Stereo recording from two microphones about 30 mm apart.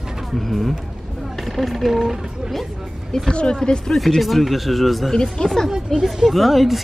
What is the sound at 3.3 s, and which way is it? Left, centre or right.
Speech, left.